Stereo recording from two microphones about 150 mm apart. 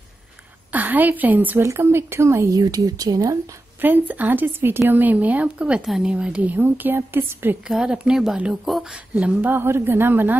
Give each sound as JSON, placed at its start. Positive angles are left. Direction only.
{"t": 0.7, "sound": "a woman's voice", "side_deg": -10}
{"t": 3.8, "sound": "a woman's voice", "side_deg": -10}